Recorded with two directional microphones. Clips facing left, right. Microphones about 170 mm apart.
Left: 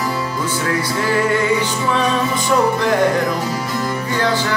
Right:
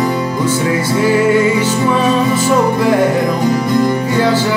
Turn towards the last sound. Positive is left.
turn(degrees=-10)  # may be behind; listen again after turning